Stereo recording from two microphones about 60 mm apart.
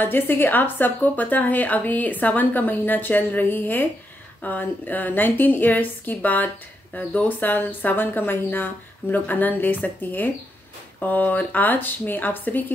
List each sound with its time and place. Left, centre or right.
0.0 s a woman's voice: left